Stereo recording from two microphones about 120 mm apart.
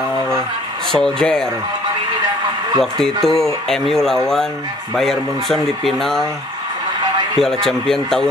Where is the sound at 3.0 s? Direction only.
Centre (ahead or behind).